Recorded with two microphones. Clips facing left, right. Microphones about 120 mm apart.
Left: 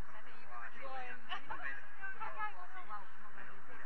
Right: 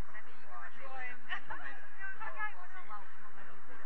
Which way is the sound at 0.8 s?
15° left (ahead or behind).